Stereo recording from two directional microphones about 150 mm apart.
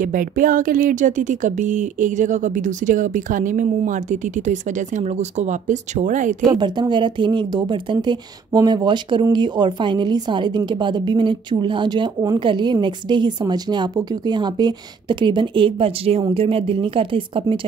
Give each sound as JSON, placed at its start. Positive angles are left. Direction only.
{"t": 0.0, "sound": "speech", "side_deg": -65}
{"t": 6.6, "sound": "speech", "side_deg": -30}